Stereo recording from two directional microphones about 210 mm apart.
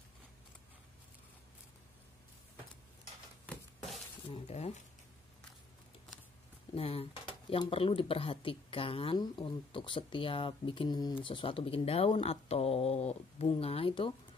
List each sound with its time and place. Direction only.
4.3 s speech: 30° left (ahead or behind)
6.7 s speech: 25° left (ahead or behind)